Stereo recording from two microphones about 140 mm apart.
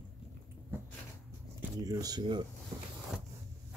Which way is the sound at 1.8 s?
25° right (ahead or behind).